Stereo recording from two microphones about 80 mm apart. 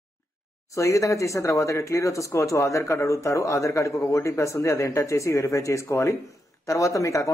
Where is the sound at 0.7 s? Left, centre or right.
Left.